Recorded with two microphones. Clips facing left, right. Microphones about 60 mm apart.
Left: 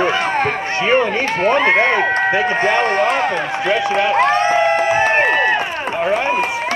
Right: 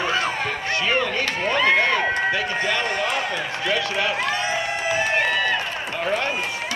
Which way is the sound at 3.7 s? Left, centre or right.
Left.